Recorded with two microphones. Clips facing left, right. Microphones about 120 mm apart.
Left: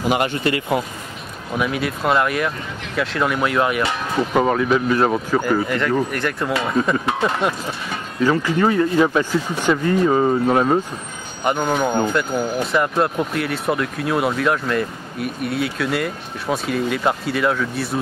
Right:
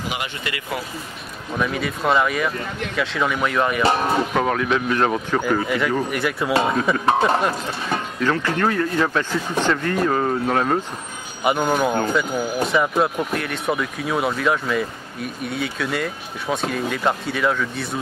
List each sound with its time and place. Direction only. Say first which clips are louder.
0.1 s speech: left 9 dB; 45° left (ahead or behind)
1.6 s speech: left 1 dB; centre (ahead or behind)
3.8 s speech: right 4 dB; 40° right (ahead or behind)
4.3 s speech: left 3 dB; 5° left (ahead or behind)
7.1 s speech: right 3 dB; 35° right (ahead or behind)
8.2 s speech: left 5 dB; 10° left (ahead or behind)
11.4 s speech: even; 5° right (ahead or behind)